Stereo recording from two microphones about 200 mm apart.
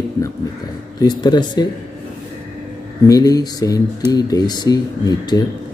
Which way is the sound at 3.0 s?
20° left (ahead or behind).